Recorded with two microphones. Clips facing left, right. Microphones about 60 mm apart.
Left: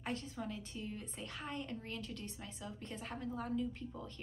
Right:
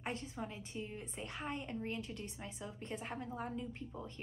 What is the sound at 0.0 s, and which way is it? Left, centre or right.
A woman's voice, right.